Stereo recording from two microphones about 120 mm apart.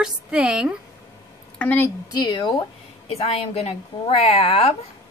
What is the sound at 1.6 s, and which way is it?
Speech, 15° left (ahead or behind).